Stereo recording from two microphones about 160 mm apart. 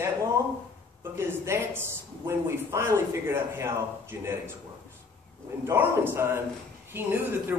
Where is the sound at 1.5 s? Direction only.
15° right (ahead or behind).